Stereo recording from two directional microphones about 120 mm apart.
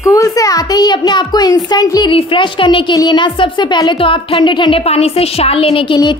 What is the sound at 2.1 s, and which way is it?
A woman's voice, 45° left (ahead or behind).